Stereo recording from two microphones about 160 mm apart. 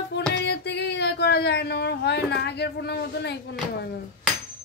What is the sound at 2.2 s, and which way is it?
A woman's voice, 90° left.